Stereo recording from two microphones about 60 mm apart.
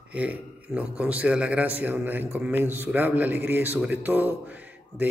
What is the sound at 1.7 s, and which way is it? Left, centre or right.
A man's voice, right.